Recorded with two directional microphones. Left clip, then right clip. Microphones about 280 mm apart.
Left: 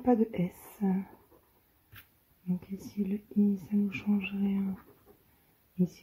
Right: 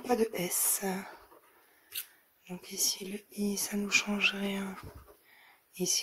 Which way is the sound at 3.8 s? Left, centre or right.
Centre.